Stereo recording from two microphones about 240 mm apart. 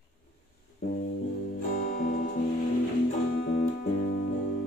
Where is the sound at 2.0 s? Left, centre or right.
Left.